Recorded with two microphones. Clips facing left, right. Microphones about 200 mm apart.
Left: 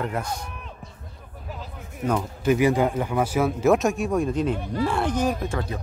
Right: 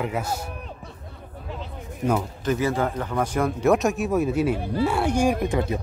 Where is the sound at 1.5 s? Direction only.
5° left (ahead or behind).